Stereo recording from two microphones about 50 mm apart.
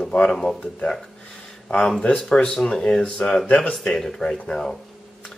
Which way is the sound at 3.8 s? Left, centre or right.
Centre.